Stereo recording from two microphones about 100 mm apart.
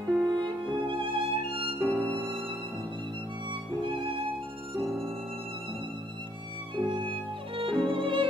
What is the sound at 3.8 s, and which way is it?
Music, 60° right (ahead or behind).